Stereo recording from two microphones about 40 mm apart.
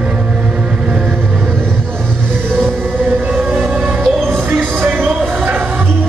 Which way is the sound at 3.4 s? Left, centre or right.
Right.